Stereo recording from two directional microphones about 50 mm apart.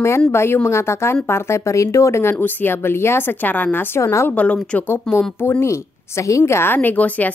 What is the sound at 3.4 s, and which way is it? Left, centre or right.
Speech, left.